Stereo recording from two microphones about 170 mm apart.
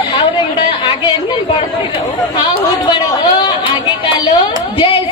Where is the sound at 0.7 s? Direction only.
30° left (ahead or behind).